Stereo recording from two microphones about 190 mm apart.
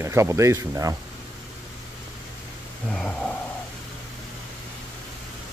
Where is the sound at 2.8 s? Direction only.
5° left (ahead or behind).